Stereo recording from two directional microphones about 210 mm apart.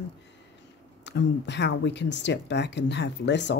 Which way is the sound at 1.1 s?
55° left (ahead or behind).